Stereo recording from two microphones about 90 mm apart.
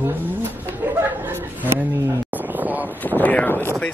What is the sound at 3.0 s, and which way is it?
Speech, 20° left (ahead or behind).